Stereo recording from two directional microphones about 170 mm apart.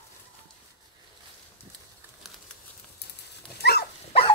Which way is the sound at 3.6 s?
70° left (ahead or behind).